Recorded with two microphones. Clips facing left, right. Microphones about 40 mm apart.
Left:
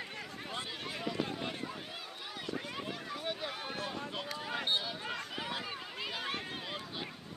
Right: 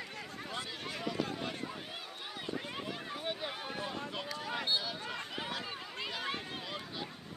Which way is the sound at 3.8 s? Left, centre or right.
Centre.